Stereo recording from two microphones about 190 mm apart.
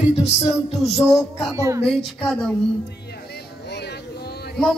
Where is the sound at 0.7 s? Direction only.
Centre (ahead or behind).